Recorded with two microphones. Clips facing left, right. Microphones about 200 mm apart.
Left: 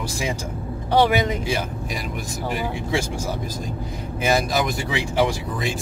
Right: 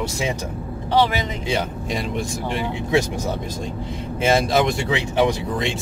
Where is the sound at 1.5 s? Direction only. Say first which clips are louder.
Right 2 dB; 25° right (ahead or behind).